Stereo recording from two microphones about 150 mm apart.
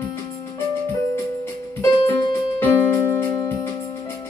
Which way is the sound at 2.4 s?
20° left (ahead or behind).